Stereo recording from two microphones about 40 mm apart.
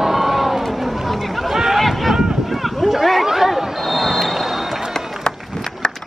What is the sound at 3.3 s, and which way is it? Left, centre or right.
Basketball bounce, centre.